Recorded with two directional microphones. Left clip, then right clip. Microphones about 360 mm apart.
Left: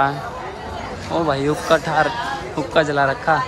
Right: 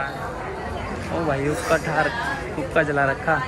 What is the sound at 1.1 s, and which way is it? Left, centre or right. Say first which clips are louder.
A man's voice: left 5 dB; centre.